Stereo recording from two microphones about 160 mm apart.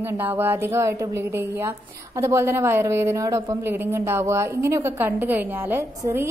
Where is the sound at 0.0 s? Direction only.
15° right (ahead or behind).